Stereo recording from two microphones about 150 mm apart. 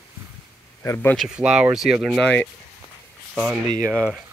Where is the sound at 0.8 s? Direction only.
15° left (ahead or behind).